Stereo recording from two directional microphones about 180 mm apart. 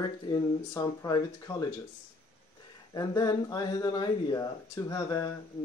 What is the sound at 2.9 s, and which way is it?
Speech, 20° left (ahead or behind).